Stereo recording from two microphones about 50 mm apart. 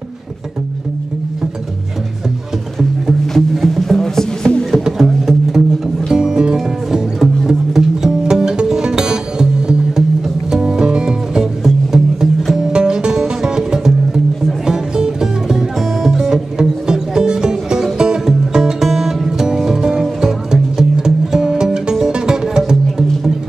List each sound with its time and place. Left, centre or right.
2.8 s music: centre
4.8 s music: centre